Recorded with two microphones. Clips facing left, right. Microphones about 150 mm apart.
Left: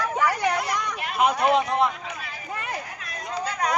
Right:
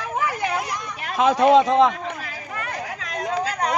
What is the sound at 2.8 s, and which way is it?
Chatter, 90° right.